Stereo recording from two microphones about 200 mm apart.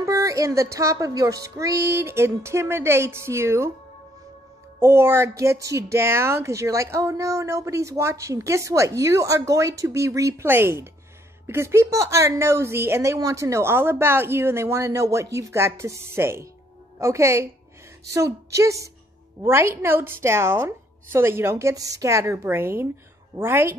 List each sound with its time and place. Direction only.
0.0 s speech: 15° right (ahead or behind)
4.7 s speech: 10° right (ahead or behind)